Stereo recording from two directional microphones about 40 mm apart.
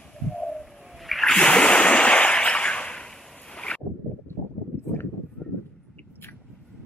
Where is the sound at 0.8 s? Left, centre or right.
Centre.